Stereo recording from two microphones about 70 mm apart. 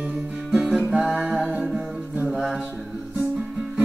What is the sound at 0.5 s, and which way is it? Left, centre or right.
Music, centre.